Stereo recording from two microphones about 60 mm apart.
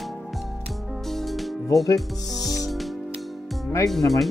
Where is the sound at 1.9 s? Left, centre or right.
Centre.